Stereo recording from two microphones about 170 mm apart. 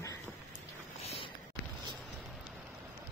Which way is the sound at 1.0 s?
35° left (ahead or behind).